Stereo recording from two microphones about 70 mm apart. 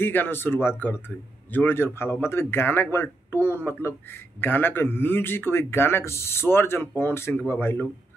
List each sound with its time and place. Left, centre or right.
0.0 s a man's voice: left